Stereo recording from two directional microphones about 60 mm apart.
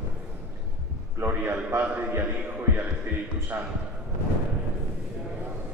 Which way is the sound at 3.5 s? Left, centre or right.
Right.